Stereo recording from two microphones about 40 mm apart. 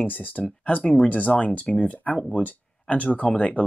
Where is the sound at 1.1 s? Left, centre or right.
Left.